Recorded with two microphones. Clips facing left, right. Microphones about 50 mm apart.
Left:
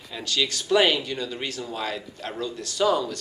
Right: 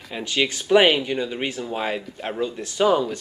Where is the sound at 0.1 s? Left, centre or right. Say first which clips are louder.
Right 3 dB; right.